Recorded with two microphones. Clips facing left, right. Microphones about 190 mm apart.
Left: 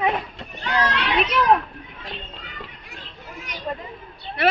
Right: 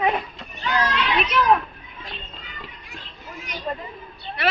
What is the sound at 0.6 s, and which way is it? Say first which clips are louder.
Children playing: even; 65° left (ahead or behind).